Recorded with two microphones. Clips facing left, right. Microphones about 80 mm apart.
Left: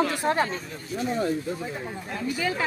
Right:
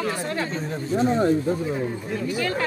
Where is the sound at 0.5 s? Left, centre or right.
Right.